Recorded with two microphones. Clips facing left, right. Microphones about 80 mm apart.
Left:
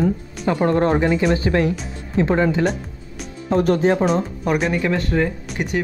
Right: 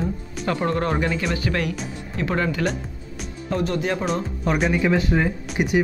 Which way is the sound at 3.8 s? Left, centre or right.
Left.